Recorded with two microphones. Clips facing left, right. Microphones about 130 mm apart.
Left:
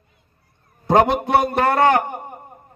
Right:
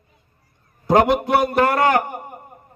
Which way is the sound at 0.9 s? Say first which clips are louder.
Even; 20° left (ahead or behind).